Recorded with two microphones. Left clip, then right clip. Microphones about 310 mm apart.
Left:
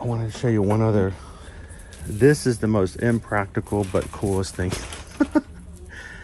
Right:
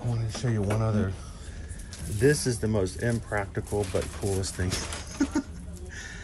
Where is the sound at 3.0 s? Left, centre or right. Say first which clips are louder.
Left 7 dB; left.